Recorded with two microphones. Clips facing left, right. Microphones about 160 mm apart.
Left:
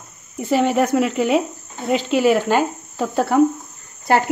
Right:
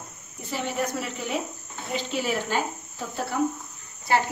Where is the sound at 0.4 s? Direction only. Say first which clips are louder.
Left 12 dB; 85° left.